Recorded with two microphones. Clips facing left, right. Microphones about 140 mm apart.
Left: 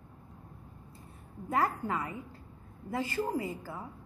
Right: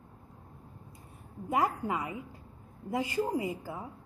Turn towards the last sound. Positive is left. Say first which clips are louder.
# right 2 dB
turn(degrees=-15)  # may be behind; listen again after turning